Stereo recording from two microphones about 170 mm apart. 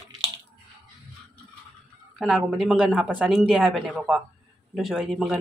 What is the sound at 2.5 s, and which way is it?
Speech, 5° right (ahead or behind).